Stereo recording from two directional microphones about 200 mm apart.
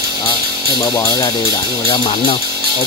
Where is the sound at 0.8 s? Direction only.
20° left (ahead or behind).